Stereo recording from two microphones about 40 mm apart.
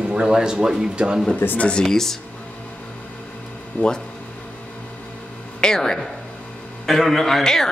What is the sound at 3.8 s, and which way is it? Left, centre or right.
Speech, left.